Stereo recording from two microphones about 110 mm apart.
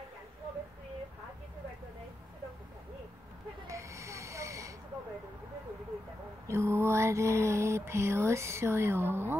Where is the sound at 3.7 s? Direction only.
25° right (ahead or behind).